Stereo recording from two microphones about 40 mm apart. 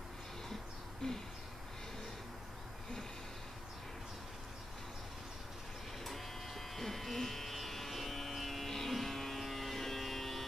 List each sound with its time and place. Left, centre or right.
1.0 s owl: centre
6.0 s electric shaver: centre